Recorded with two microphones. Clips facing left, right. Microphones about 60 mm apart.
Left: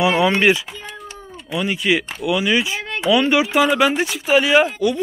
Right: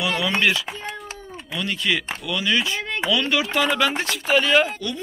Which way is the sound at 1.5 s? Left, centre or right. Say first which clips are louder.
Left 5 dB; centre.